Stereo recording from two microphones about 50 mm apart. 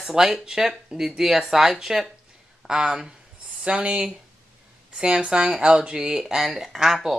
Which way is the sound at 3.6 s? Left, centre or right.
Right.